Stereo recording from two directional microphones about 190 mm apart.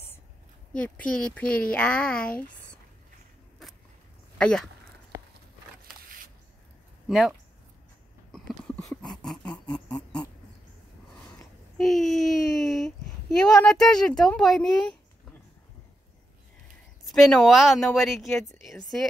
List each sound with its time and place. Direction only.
0.7 s speech: 5° left (ahead or behind)
4.4 s speech: 5° left (ahead or behind)
5.1 s a sound: 15° right (ahead or behind)
7.1 s speech: centre (ahead or behind)
8.3 s a sound: 5° left (ahead or behind)
11.9 s speech: centre (ahead or behind)
17.1 s speech: centre (ahead or behind)